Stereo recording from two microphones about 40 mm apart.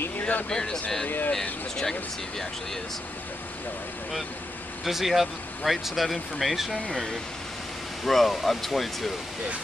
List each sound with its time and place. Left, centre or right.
0.5 s speech: centre
1.0 s speech: left
1.8 s speech: centre
4.8 s speech: centre
8.0 s speech: centre